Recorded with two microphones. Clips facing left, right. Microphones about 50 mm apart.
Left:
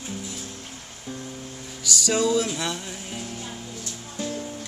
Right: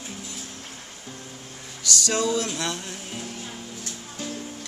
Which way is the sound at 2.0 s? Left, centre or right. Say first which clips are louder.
Left 3 dB; centre.